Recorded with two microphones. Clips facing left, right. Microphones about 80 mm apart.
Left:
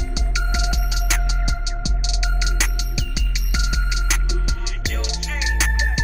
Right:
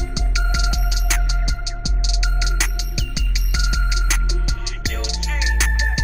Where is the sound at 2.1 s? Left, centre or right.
Centre.